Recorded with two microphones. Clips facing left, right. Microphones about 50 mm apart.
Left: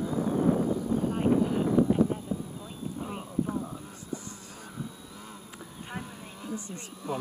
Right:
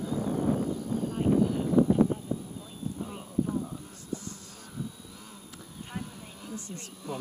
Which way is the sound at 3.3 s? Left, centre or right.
Centre.